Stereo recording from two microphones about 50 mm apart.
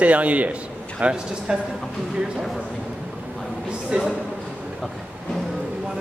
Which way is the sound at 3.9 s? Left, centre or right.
Centre.